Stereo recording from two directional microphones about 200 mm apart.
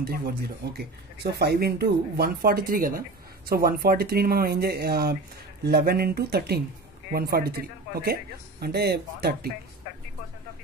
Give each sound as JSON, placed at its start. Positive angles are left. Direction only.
{"t": 0.0, "sound": "speech", "side_deg": -50}